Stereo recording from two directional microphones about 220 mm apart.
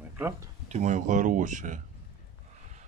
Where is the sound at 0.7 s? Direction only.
30° right (ahead or behind).